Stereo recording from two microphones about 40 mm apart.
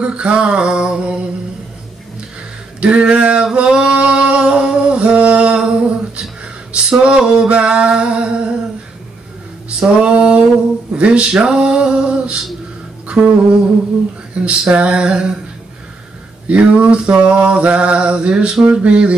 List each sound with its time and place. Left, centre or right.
0.0 s mantra: right
2.8 s mantra: right
3.5 s singing: right
5.7 s a sound: right
6.4 s male singing: right
8.1 s mantra: right
9.8 s a sound: right
11.0 s mantra: right
16.4 s mantra: right; by 18.7 s centre
18.7 s a sound: right